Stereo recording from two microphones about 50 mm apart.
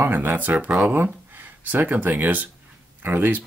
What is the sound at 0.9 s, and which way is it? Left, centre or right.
Speech, right.